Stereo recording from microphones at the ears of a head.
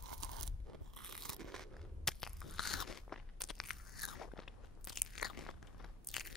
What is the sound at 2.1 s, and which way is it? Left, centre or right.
Crunch, left.